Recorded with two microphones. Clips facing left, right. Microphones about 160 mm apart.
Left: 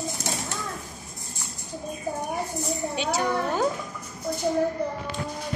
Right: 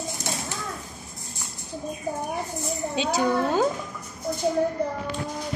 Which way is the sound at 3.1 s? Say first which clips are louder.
Right 4 dB; 10° right (ahead or behind).